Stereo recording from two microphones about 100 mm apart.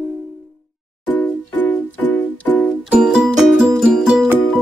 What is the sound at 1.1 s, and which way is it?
Music, 15° left (ahead or behind).